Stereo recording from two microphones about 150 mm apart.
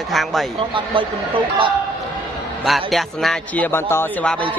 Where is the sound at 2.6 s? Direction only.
Centre (ahead or behind); by 4.0 s 15° left (ahead or behind).